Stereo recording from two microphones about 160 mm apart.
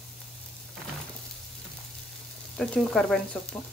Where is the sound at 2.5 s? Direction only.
5° left (ahead or behind).